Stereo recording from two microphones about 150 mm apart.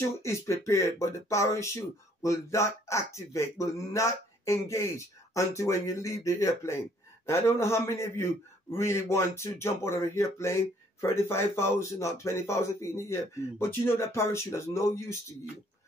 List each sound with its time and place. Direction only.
0.2 s a man's voice: 20° left (ahead or behind)